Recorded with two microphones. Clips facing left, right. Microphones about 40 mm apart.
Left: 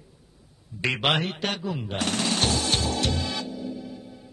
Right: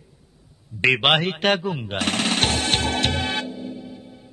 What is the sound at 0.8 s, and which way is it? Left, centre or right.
A woman's voice, right.